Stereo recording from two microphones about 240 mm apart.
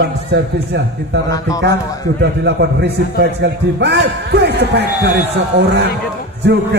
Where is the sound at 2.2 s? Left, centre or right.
Right.